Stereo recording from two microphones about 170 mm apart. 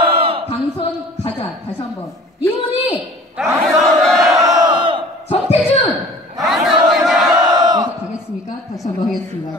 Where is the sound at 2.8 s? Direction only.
10° right (ahead or behind).